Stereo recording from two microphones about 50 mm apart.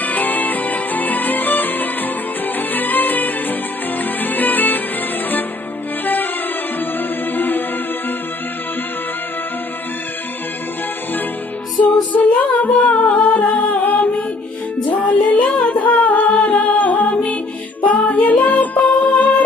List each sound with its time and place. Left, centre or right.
0.0 s music: left
7.3 s music: left
12.1 s music: left
15.6 s humming: left
17.8 s music: left